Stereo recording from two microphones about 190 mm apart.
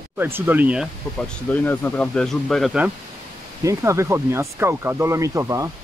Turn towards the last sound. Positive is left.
turn(degrees=-15)  # may be behind; listen again after turning